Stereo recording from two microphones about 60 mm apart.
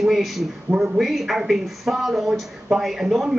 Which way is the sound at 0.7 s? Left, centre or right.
Right.